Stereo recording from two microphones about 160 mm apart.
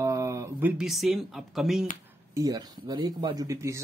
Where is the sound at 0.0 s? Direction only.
20° right (ahead or behind); by 1.9 s centre (ahead or behind).